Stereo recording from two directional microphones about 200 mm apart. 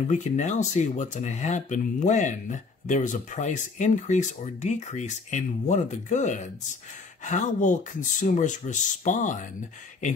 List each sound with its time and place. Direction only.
0.1 s speech: 35° left (ahead or behind)